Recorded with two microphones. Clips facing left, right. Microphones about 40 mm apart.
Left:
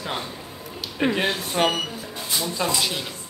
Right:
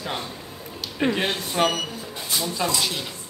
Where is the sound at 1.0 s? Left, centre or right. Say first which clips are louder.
Left 1 dB; centre.